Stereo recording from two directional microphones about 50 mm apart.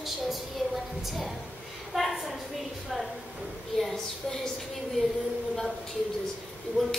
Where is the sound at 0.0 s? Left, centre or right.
Centre.